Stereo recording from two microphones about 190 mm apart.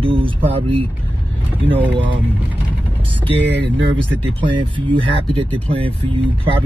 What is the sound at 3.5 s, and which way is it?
Speech, 65° right (ahead or behind).